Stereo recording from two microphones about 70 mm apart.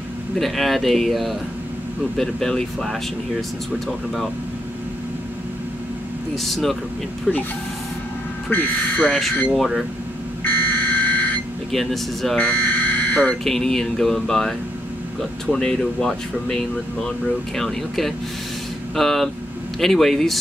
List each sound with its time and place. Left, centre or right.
0.4 s speech: centre
6.3 s speech: centre
8.5 s speech: left
9.6 s speech: centre
10.4 s buzzer: left
11.7 s speech: centre
12.4 s buzzer: left
13.4 s speech: centre
15.5 s speech: centre